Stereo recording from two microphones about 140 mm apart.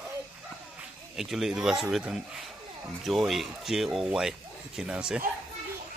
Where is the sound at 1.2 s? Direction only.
5° right (ahead or behind).